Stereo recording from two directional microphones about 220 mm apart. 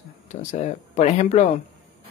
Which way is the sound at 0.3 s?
35° left (ahead or behind).